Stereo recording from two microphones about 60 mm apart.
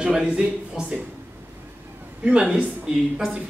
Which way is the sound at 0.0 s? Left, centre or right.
Centre.